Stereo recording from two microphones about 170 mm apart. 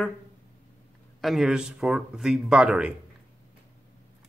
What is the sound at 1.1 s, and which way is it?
Speech, centre (ahead or behind).